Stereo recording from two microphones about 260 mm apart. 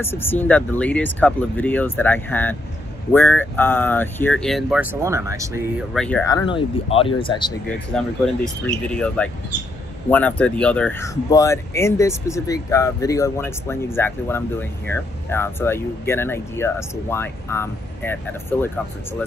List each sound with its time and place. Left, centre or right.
0.0 s speech: centre
5.9 s speech: centre
6.3 s speech: centre
8.6 s speech: centre